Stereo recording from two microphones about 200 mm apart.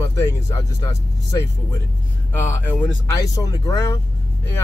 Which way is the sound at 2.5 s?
10° left (ahead or behind).